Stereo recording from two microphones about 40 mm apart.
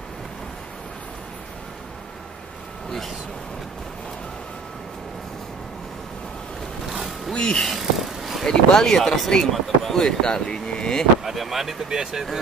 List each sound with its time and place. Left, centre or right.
7.3 s speech: centre
7.7 s vehicle: centre
8.5 s speech: centre
11.2 s speech: centre